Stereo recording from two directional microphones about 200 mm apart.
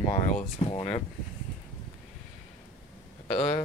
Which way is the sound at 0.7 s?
30° left (ahead or behind).